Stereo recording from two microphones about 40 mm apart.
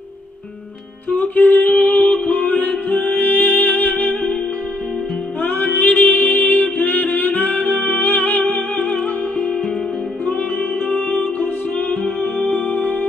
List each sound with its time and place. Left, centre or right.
1.1 s a sound: left
2.2 s music: left
5.4 s music: left
10.9 s music: left